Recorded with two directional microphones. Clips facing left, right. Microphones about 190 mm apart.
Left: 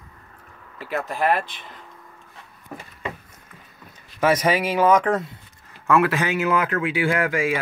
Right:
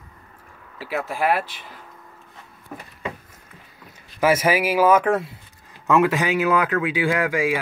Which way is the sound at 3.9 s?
5° right (ahead or behind).